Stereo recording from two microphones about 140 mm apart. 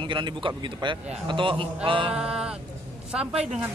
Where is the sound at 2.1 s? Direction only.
5° right (ahead or behind).